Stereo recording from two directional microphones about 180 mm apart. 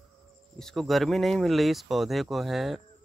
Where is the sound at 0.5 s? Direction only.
Centre (ahead or behind).